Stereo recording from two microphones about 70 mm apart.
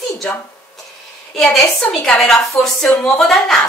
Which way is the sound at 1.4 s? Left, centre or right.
Centre.